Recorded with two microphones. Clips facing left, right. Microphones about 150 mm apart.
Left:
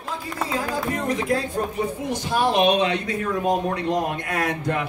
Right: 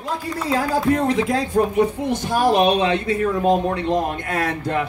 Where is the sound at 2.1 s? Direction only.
40° right (ahead or behind).